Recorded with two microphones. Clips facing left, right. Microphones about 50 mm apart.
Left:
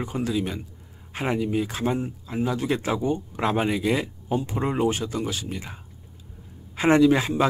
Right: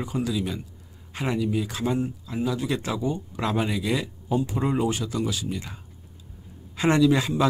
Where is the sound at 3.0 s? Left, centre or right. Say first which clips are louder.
Left 3 dB; left.